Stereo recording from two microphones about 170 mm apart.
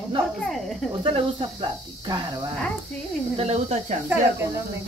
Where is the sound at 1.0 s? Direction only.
30° right (ahead or behind).